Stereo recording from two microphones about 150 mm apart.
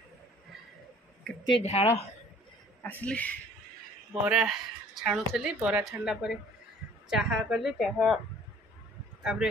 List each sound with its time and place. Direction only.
1.2 s a woman's voice: 5° left (ahead or behind)
1.6 s speech: 45° left (ahead or behind)
2.8 s speech: 10° left (ahead or behind)
4.1 s speech: 5° right (ahead or behind)
9.2 s speech: 5° right (ahead or behind)